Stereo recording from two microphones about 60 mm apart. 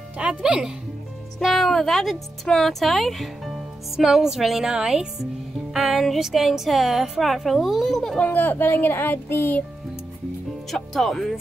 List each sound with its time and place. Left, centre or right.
0.2 s speech: centre
1.4 s speech: centre
8.3 s speech: left
10.7 s speech: centre